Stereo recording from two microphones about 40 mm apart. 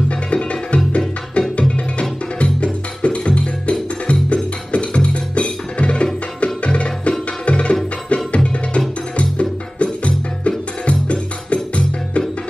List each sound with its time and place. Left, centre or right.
0.3 s music: left
6.4 s tabla: left
8.1 s music: left